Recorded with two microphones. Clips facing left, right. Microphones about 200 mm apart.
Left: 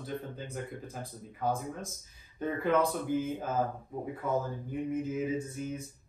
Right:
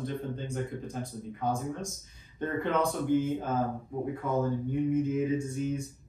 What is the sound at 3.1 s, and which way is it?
Speech, 5° left (ahead or behind).